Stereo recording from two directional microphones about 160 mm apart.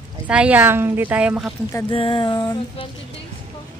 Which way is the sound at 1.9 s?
35° left (ahead or behind).